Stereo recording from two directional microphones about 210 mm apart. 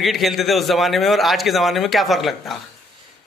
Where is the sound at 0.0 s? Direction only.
Centre (ahead or behind).